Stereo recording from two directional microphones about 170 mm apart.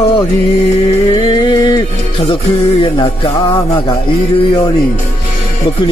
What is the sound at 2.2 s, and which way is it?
Music, 35° left (ahead or behind).